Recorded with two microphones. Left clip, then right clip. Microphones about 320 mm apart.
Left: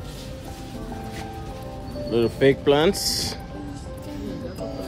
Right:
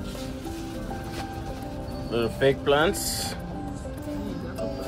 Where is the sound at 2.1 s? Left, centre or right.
Left.